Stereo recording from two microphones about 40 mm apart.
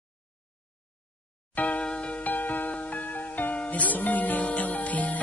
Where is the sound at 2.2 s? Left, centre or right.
Left.